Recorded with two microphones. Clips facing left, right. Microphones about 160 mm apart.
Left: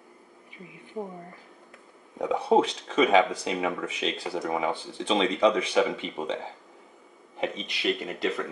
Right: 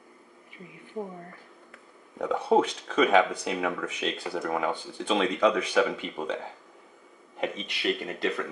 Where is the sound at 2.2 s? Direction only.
10° left (ahead or behind).